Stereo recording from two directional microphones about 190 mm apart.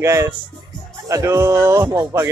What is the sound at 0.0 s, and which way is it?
Speech, 15° right (ahead or behind).